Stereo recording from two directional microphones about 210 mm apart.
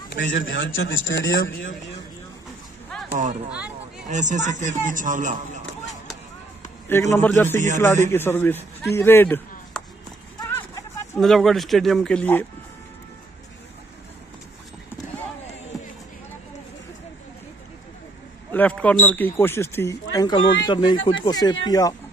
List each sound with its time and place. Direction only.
0.1 s a man's voice: 60° left (ahead or behind)
3.1 s speech: 35° right (ahead or behind)
3.4 s speech: 5° right (ahead or behind)
4.1 s a man's voice: 35° right (ahead or behind)
6.9 s a man's voice: 10° left (ahead or behind)
11.1 s speech: centre (ahead or behind)
18.5 s speech: 5° left (ahead or behind)